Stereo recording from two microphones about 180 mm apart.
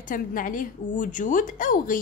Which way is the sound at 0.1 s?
50° left (ahead or behind).